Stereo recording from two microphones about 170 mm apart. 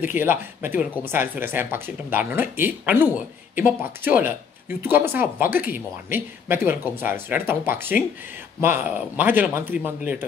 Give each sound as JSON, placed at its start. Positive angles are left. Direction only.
{"t": 0.0, "sound": "speech", "side_deg": -10}